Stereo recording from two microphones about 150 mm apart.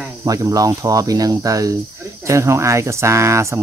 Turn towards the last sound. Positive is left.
turn(degrees=-20)  # may be behind; listen again after turning